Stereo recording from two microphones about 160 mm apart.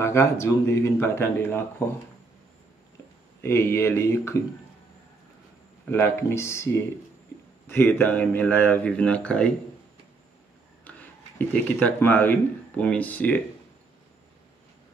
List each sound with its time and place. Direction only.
0.0 s speech: 15° left (ahead or behind)
3.3 s speech: 15° left (ahead or behind)
5.9 s speech: 15° left (ahead or behind)
10.8 s speech: 10° left (ahead or behind)